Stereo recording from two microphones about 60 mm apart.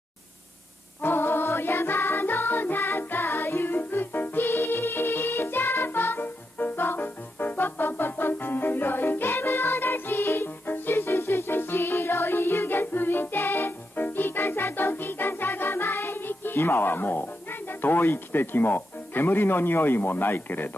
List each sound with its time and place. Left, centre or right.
1.0 s music: left